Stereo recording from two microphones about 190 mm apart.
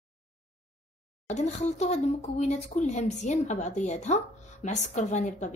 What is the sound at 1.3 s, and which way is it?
Speech, 35° left (ahead or behind).